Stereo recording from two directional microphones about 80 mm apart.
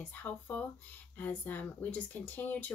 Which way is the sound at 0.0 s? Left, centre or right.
Centre.